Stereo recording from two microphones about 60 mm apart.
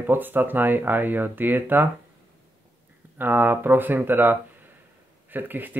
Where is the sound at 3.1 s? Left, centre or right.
Right.